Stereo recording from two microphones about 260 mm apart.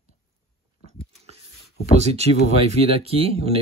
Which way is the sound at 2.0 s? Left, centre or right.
Right.